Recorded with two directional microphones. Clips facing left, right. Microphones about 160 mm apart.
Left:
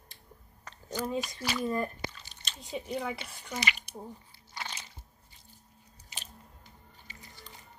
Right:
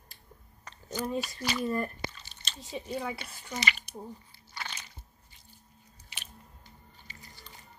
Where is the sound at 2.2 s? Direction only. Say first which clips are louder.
Right 1 dB; 15° left (ahead or behind).